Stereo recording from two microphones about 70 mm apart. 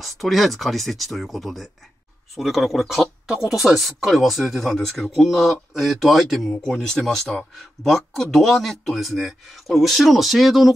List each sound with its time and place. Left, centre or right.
0.0 s speech: centre